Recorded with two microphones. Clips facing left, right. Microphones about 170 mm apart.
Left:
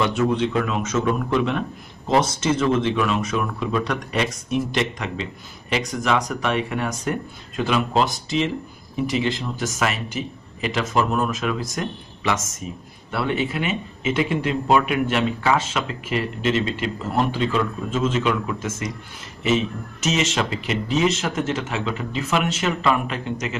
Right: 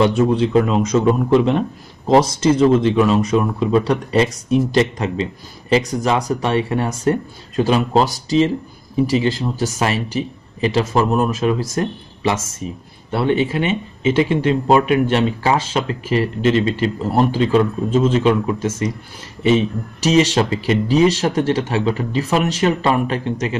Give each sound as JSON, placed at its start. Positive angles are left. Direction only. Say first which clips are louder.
{"t": 0.0, "sound": "speech", "louder": "right 5 dB", "side_deg": -30}